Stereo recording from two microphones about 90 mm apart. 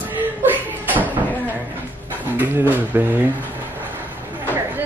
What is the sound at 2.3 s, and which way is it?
Speech, 20° right (ahead or behind).